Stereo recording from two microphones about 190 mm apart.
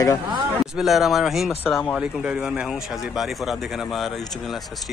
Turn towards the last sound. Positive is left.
turn(degrees=0)  # may be behind; listen again after turning